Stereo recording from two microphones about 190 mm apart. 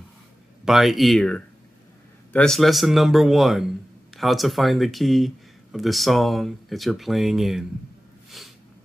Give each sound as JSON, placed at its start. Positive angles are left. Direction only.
{"t": 0.7, "sound": "a man's voice", "side_deg": 0}
{"t": 8.4, "sound": "snort", "side_deg": 0}